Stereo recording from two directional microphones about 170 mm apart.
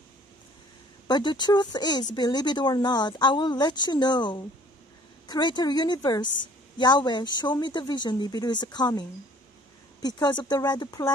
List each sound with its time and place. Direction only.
1.0 s speech: 25° left (ahead or behind)
10.0 s speech: 25° left (ahead or behind)